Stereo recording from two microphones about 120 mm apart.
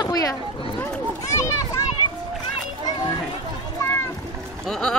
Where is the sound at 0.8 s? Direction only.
25° left (ahead or behind).